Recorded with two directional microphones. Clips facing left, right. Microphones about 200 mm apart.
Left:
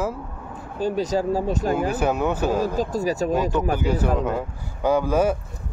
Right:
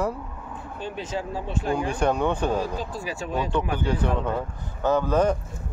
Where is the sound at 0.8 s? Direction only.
40° left (ahead or behind).